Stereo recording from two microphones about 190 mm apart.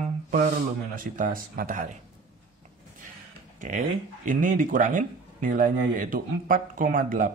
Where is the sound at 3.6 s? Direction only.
40° right (ahead or behind).